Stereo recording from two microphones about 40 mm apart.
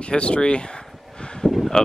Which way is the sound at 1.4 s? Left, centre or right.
Left.